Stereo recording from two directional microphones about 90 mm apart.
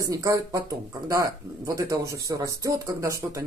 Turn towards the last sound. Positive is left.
turn(degrees=-35)  # may be behind; listen again after turning